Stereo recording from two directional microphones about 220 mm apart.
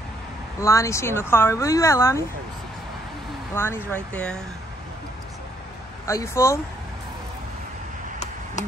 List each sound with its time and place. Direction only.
0.6 s speech: 15° left (ahead or behind)
3.5 s speech: 10° left (ahead or behind)
6.0 s speech: 10° left (ahead or behind)
8.6 s a sound: 35° left (ahead or behind)